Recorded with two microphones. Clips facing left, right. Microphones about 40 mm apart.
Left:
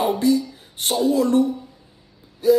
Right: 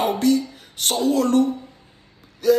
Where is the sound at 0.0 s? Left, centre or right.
Right.